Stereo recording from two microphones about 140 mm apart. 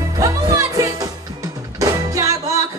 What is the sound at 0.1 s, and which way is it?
Music, 25° right (ahead or behind).